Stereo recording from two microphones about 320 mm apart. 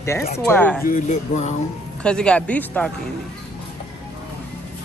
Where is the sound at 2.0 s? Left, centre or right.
Centre.